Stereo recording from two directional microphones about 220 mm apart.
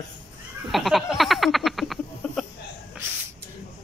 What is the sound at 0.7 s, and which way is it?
Frog, centre (ahead or behind).